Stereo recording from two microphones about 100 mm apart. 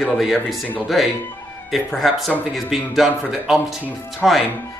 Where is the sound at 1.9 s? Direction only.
Centre (ahead or behind).